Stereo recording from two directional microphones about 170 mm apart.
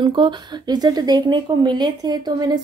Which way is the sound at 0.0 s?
30° right (ahead or behind).